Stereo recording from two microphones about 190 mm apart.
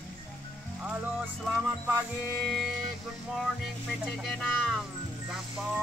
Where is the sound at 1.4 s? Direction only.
5° right (ahead or behind).